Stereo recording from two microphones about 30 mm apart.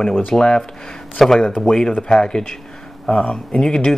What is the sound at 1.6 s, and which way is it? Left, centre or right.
Speech, left.